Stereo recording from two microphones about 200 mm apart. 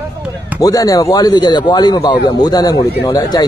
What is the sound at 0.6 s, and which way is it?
A man's voice, 15° left (ahead or behind).